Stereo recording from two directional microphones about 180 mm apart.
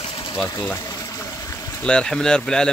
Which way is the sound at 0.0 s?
30° left (ahead or behind).